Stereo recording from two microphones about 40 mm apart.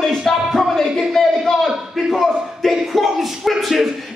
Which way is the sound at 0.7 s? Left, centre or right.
Centre.